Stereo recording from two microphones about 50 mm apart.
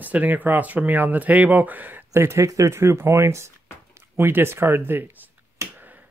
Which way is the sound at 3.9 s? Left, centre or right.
Right.